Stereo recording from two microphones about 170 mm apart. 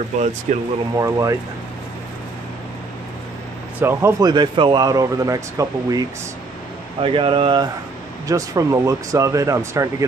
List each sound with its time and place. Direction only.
0.5 s speech: 50° right (ahead or behind)
0.9 s speech: 20° right (ahead or behind)
3.8 s speech: 15° right (ahead or behind)
7.0 s speech: 30° right (ahead or behind)